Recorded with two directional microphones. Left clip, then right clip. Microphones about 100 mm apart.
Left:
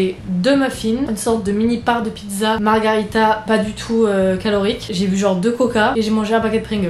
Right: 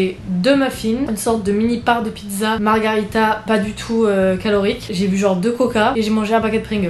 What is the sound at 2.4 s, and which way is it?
Speech, 5° left (ahead or behind).